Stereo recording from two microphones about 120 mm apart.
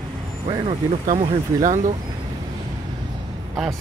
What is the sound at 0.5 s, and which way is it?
Speech, 55° right (ahead or behind).